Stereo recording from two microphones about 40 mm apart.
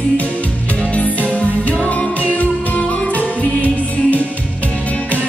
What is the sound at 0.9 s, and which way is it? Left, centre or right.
Music, left.